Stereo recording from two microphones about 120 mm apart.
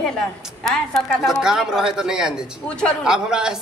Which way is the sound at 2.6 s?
10° left (ahead or behind).